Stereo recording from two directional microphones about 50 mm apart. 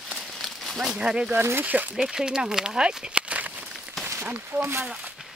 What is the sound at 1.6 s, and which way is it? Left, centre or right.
Speech, right.